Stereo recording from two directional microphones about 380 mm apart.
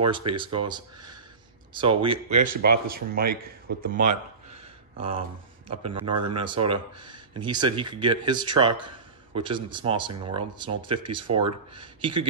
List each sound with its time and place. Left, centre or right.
0.0 s speech: centre